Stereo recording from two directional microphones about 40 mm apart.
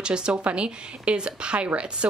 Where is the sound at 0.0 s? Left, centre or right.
Right.